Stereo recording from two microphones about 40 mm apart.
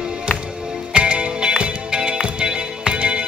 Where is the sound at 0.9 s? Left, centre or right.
Right.